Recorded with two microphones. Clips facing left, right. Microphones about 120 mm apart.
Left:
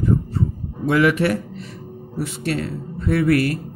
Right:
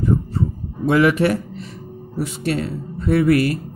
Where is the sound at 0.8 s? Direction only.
25° right (ahead or behind).